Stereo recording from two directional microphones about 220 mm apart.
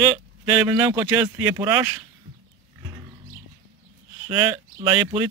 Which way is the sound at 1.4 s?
10° right (ahead or behind).